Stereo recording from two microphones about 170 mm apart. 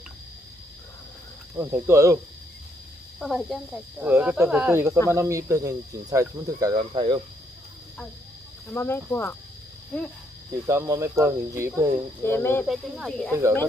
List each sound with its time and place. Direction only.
1.6 s speech: 15° right (ahead or behind)
3.2 s speech: centre (ahead or behind); by 7.2 s 30° right (ahead or behind)
8.7 s speech: 15° left (ahead or behind)
10.7 s speech: 15° right (ahead or behind)
12.2 s speech: 15° left (ahead or behind)
12.6 s speech: centre (ahead or behind)